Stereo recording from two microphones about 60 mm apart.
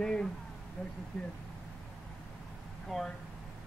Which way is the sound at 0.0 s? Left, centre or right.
Centre.